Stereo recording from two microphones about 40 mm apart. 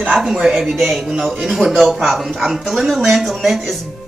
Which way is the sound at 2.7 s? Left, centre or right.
Centre.